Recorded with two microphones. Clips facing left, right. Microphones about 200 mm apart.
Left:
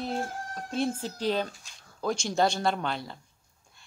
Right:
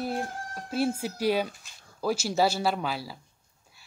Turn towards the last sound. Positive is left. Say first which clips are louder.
# even
turn(degrees=-5)  # may be behind; listen again after turning